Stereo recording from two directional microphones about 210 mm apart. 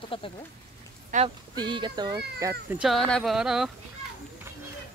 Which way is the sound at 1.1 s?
35° right (ahead or behind).